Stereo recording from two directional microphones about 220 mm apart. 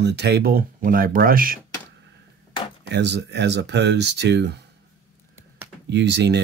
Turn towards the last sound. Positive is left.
turn(degrees=-50)  # may be behind; listen again after turning